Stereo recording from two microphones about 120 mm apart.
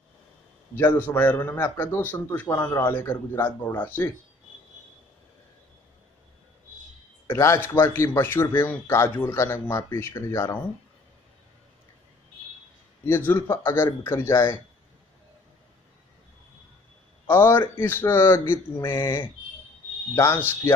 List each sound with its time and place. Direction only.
0.7 s a man's voice: 15° left (ahead or behind)
7.2 s speech: 25° left (ahead or behind)
13.0 s speech: 20° left (ahead or behind)
17.3 s speech: 15° left (ahead or behind)